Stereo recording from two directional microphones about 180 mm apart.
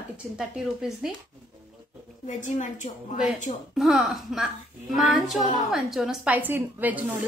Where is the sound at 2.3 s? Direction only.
45° left (ahead or behind).